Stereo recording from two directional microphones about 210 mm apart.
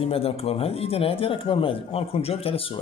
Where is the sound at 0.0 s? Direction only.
25° left (ahead or behind).